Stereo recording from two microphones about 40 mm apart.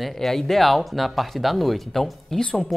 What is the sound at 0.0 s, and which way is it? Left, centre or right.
Speech, centre.